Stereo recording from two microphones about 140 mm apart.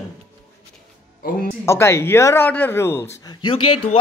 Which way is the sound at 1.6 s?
20° left (ahead or behind).